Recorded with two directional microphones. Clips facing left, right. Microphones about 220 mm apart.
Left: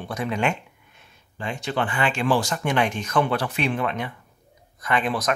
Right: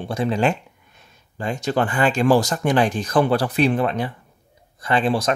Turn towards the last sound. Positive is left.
turn(degrees=-30)  # may be behind; listen again after turning